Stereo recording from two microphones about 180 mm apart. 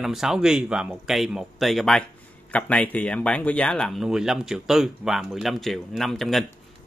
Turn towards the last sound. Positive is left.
turn(degrees=0)  # may be behind; listen again after turning